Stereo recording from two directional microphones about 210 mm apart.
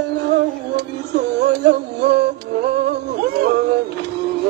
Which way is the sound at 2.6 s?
55° right (ahead or behind).